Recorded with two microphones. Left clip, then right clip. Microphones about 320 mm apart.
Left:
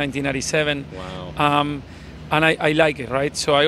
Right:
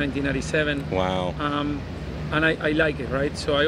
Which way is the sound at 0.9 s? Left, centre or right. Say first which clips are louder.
Right 9 dB; right.